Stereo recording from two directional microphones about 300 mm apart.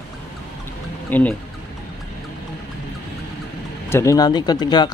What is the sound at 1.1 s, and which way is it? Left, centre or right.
Speech, centre.